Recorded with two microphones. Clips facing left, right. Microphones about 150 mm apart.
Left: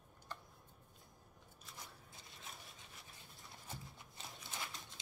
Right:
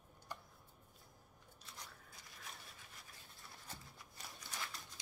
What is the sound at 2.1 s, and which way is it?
Scrape, 25° left (ahead or behind).